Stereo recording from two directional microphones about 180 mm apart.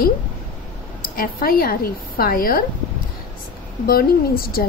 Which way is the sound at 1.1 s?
55° left (ahead or behind).